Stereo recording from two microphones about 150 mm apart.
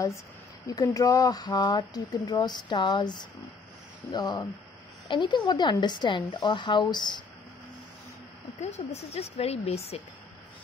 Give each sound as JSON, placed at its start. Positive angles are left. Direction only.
{"t": 0.7, "sound": "speech", "side_deg": 25}
{"t": 8.5, "sound": "speech", "side_deg": 45}